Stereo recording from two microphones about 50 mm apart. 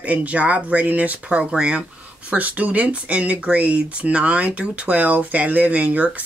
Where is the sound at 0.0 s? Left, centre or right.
Right.